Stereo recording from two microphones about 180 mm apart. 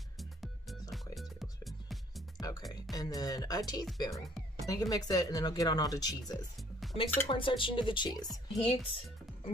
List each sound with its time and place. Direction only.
0.2 s music: centre (ahead or behind)
2.7 s speech: 20° left (ahead or behind)
8.6 s music: 30° left (ahead or behind)